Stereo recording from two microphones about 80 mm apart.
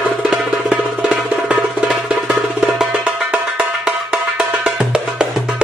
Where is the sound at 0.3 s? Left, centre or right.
Centre.